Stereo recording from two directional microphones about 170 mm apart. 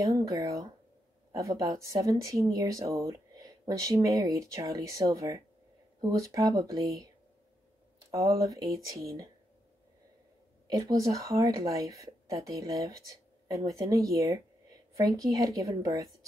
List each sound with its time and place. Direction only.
0.0 s speech: 20° right (ahead or behind)
8.1 s speech: 20° right (ahead or behind)
10.7 s speech: 20° right (ahead or behind)